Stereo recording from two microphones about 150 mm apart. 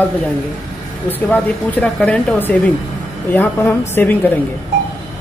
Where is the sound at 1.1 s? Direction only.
10° left (ahead or behind).